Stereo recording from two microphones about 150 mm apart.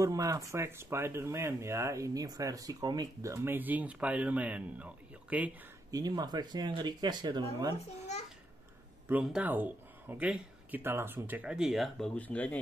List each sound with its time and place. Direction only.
0.0 s speech: 20° right (ahead or behind)
5.9 s speech: 25° right (ahead or behind)
9.1 s speech: 5° right (ahead or behind)
12.2 s speech: 10° left (ahead or behind)